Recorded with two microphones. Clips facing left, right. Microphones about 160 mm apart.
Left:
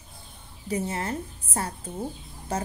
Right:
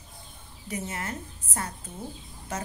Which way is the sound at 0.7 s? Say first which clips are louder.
Left 5 dB; 30° left (ahead or behind).